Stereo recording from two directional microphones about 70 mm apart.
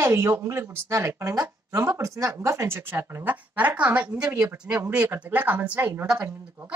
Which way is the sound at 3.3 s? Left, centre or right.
Right.